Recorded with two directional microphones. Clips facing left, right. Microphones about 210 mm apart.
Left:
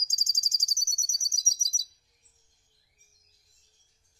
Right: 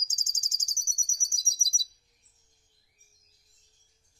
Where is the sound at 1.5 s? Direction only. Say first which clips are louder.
Right 2 dB; 10° right (ahead or behind).